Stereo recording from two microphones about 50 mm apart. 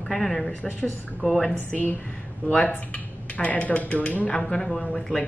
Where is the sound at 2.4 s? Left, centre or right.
Left.